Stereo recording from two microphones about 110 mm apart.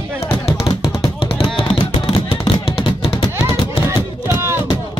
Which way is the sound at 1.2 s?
55° left (ahead or behind).